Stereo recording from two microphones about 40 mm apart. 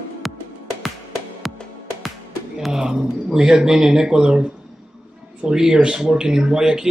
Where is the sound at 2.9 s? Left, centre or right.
Centre.